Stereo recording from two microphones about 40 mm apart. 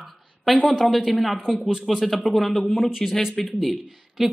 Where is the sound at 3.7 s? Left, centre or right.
Centre.